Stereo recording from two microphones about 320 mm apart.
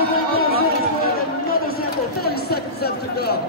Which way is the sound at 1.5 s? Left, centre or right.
Left.